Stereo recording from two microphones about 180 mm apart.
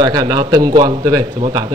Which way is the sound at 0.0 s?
20° right (ahead or behind).